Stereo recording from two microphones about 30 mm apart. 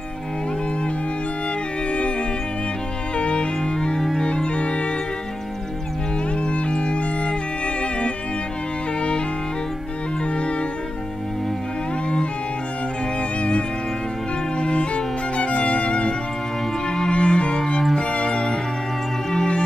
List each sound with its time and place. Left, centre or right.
1.9 s music: left
3.2 s music: left
6.4 s music: left
13.4 s music: left
17.6 s music: centre